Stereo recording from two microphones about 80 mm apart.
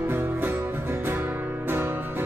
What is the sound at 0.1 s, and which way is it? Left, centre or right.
Music, right.